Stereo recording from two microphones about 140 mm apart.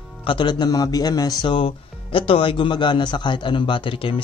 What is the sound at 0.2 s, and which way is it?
Speech, 35° left (ahead or behind).